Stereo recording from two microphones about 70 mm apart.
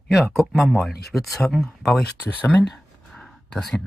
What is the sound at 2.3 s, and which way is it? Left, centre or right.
Speech, left.